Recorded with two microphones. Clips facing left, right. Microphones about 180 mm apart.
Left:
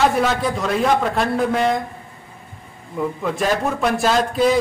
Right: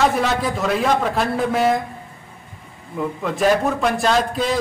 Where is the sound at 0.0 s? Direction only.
Centre (ahead or behind).